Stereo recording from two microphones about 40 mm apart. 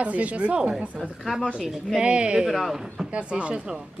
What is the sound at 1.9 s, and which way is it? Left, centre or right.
Speech, right.